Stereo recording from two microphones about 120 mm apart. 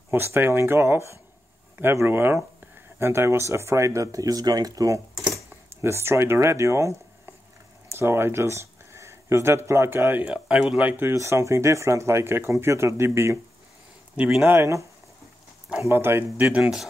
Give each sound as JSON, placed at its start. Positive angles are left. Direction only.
{"t": 0.1, "sound": "speech", "side_deg": -20}
{"t": 5.3, "sound": "a sound", "side_deg": -20}
{"t": 7.9, "sound": "speech", "side_deg": -20}
{"t": 10.2, "sound": "speech", "side_deg": -5}
{"t": 14.1, "sound": "speech", "side_deg": -10}